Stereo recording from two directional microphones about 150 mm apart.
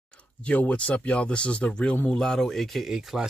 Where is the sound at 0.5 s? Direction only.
10° left (ahead or behind).